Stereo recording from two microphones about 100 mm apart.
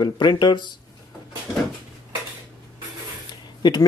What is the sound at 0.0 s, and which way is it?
Speech, 50° left (ahead or behind).